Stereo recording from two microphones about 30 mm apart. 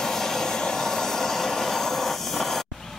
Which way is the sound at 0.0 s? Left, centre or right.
Centre.